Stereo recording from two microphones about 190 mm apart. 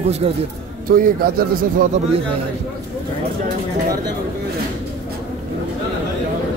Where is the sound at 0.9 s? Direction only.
50° right (ahead or behind).